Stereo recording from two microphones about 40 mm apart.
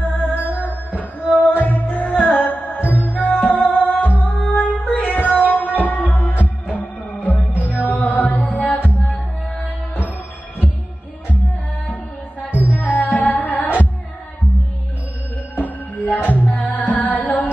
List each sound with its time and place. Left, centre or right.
0.0 s music: left
1.6 s music: left
11.2 s music: left
15.5 s music: left